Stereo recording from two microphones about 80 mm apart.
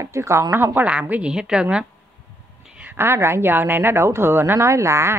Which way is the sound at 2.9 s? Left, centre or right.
Right.